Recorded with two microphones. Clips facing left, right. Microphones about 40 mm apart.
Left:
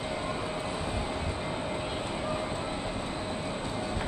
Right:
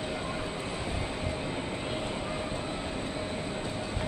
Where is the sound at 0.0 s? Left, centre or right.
Centre.